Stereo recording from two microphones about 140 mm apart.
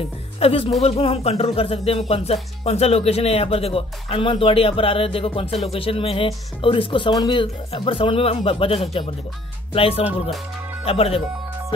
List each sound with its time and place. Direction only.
0.4 s speech: 45° left (ahead or behind)